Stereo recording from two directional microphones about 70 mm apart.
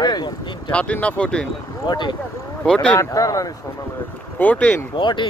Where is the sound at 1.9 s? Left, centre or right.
Left.